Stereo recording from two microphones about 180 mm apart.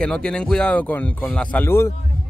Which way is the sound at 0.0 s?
5° left (ahead or behind).